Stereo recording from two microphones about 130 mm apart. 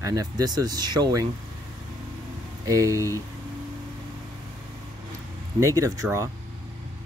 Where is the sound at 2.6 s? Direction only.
25° right (ahead or behind).